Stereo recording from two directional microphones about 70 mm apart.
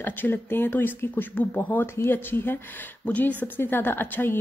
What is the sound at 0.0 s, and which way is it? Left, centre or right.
A woman's voice, left.